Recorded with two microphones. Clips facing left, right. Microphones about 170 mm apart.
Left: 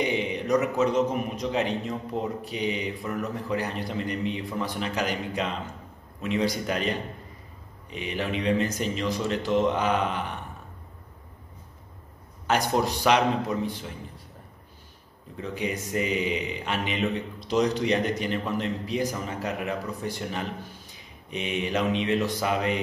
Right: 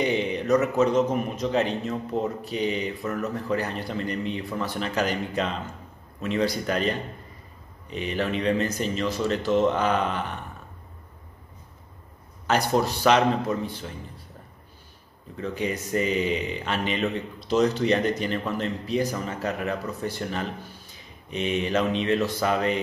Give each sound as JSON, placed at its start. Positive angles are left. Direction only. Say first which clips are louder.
{"t": 0.0, "sound": "speech", "louder": "right 2 dB", "side_deg": 15}
{"t": 12.4, "sound": "speech", "louder": "right 1 dB", "side_deg": 15}
{"t": 15.3, "sound": "speech", "louder": "right 2 dB", "side_deg": 15}